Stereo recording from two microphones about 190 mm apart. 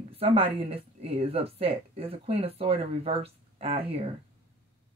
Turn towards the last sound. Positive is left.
turn(degrees=-30)  # may be behind; listen again after turning